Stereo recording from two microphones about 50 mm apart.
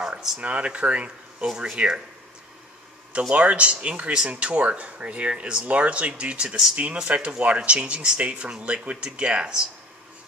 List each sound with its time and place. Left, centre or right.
0.4 s speech: right
3.1 s speech: right